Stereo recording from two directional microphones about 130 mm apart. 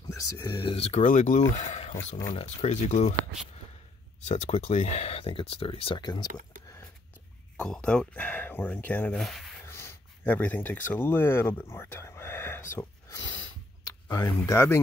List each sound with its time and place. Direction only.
0.4 s speech: 35° left (ahead or behind)
1.0 s speech: 80° left
1.5 s speech: 65° left (ahead or behind)
4.3 s speech: 55° left (ahead or behind); by 6.2 s 35° left (ahead or behind)
7.5 s speech: 5° left (ahead or behind)
9.2 s speech: centre (ahead or behind)
9.7 s speech: 20° left (ahead or behind)
14.0 s speech: 30° left (ahead or behind)